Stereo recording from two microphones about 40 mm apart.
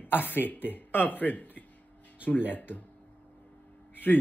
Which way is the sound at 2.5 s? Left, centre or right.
Left.